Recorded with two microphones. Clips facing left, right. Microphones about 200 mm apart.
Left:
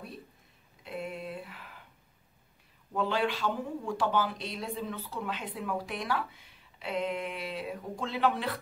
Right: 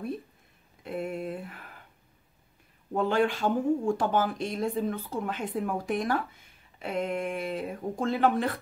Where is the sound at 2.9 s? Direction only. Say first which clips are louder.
Right 4 dB; 50° right (ahead or behind).